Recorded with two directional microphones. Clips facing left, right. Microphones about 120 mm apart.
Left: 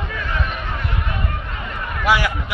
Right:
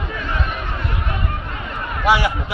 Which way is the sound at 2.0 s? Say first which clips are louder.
Right 2 dB; 25° right (ahead or behind).